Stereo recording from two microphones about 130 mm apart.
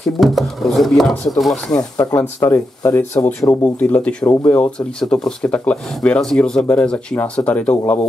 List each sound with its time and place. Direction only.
0.0 s speech: centre (ahead or behind)
1.8 s speech: 30° left (ahead or behind); by 8.1 s 10° left (ahead or behind)